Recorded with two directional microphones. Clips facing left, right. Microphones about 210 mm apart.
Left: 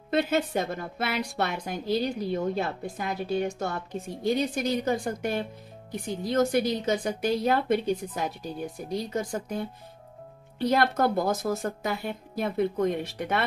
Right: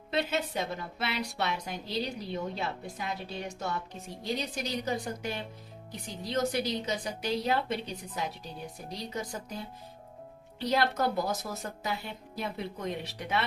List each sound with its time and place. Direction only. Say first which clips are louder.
0.1 s a woman's voice: left 6 dB; 50° left (ahead or behind)